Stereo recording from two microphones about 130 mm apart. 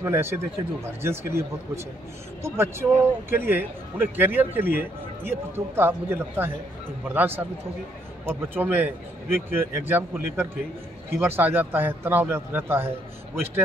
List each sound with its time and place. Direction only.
0.0 s speech: 20° right (ahead or behind)
2.4 s a man's voice: 20° right (ahead or behind)